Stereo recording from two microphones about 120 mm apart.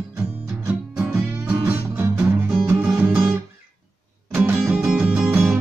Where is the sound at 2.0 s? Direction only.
15° right (ahead or behind).